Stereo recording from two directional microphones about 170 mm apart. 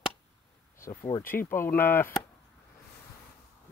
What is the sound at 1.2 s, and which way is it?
Speech, 55° left (ahead or behind).